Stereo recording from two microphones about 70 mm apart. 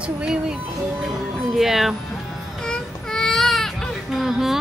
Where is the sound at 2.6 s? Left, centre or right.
Centre.